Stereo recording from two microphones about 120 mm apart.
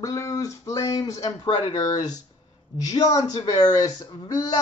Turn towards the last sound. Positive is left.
turn(degrees=30)  # may be behind; listen again after turning